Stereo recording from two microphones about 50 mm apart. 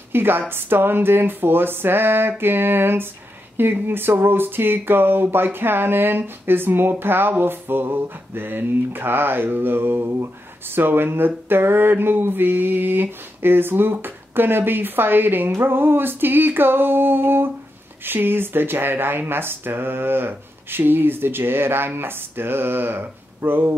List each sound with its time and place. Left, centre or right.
0.1 s speech: right